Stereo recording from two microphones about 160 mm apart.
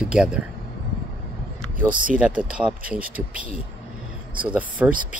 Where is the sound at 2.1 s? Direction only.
5° right (ahead or behind).